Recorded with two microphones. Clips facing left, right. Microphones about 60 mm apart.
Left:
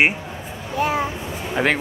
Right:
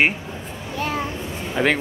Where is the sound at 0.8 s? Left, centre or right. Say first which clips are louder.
Left 4 dB; centre.